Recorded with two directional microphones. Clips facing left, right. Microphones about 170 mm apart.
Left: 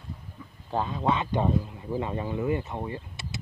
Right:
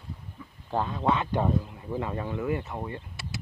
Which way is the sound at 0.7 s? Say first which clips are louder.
Even; 15° left (ahead or behind).